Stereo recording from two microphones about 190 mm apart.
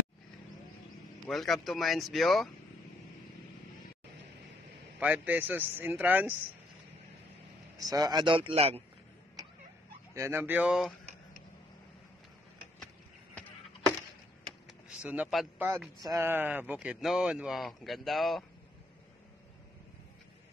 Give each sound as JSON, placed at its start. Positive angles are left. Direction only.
{"t": 1.2, "sound": "speech", "side_deg": 0}
{"t": 5.0, "sound": "speech", "side_deg": -10}
{"t": 7.7, "sound": "speech", "side_deg": -20}
{"t": 10.1, "sound": "speech", "side_deg": -15}
{"t": 15.0, "sound": "speech", "side_deg": -5}
{"t": 16.0, "sound": "speech", "side_deg": -15}